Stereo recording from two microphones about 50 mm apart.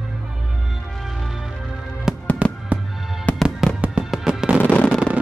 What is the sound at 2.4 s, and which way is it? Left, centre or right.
Fireworks, right.